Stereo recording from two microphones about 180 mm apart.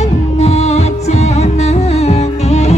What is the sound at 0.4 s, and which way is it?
Music, 35° left (ahead or behind).